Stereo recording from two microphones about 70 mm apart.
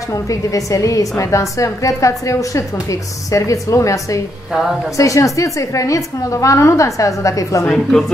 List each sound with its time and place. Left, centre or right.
0.1 s a woman's voice: left
7.6 s speech: centre